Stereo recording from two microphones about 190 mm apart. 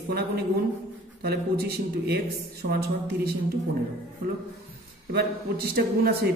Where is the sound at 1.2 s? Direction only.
55° right (ahead or behind).